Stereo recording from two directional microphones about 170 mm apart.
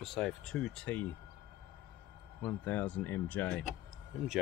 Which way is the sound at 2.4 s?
15° left (ahead or behind).